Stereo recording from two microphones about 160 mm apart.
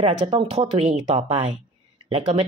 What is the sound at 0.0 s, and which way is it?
Speech, 35° right (ahead or behind).